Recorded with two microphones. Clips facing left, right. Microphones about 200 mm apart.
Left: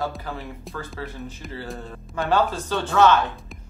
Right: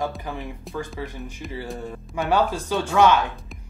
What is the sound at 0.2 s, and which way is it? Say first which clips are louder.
Speech: right 1 dB; 15° right (ahead or behind).